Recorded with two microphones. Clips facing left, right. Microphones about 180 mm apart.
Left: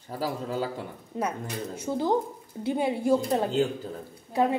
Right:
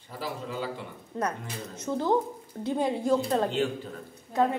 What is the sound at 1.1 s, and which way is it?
A woman's voice, 15° left (ahead or behind).